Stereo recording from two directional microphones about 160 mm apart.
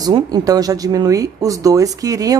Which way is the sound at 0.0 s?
25° right (ahead or behind).